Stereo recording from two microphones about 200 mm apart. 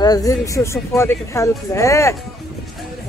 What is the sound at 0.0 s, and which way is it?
Speech, 20° left (ahead or behind).